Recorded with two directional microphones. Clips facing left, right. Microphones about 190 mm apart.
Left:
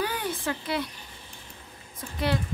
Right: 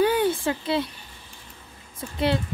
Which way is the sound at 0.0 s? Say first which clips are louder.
Right 9 dB; 25° right (ahead or behind).